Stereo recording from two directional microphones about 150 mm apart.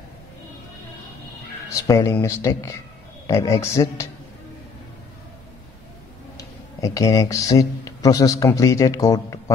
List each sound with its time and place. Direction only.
1.7 s speech: 20° left (ahead or behind)
6.3 s speech: 20° left (ahead or behind)